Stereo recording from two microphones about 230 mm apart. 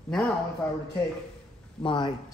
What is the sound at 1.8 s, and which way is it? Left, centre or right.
Speech, left.